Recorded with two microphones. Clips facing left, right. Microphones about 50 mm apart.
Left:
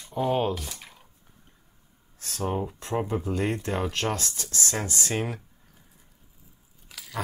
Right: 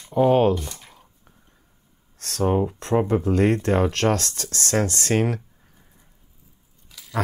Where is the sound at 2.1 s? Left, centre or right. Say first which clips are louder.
Right 7 dB; right.